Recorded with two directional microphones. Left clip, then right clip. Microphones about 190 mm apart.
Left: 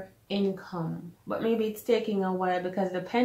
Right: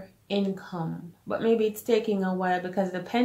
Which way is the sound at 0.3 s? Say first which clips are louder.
Right 1 dB; 40° right (ahead or behind).